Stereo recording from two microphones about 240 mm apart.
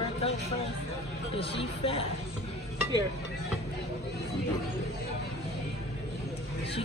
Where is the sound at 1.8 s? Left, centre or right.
Left.